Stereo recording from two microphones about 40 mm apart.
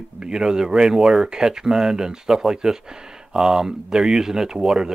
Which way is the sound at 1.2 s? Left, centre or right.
Centre.